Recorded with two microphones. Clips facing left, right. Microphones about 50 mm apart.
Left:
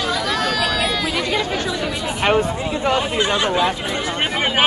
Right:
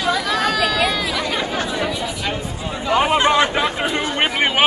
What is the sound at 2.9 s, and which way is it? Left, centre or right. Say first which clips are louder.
Speech: right 4 dB; right.